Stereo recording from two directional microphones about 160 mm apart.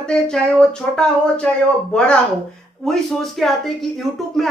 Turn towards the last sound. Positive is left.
turn(degrees=0)  # may be behind; listen again after turning